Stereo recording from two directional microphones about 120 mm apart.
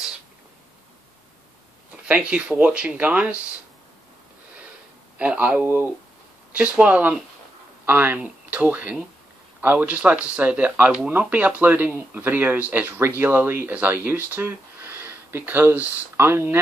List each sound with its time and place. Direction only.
2.0 s speech: 10° right (ahead or behind)
5.2 s speech: 10° right (ahead or behind)